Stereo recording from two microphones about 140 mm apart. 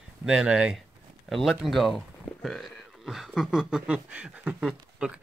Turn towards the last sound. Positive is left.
turn(degrees=-5)  # may be behind; listen again after turning